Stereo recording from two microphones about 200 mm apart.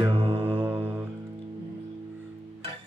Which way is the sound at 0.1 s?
30° right (ahead or behind).